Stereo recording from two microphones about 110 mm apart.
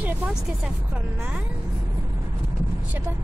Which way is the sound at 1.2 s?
15° right (ahead or behind).